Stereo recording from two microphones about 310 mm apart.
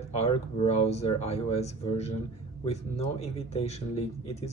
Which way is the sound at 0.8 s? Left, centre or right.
Centre.